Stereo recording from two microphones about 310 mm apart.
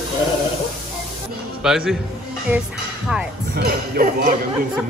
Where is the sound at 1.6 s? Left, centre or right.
Centre.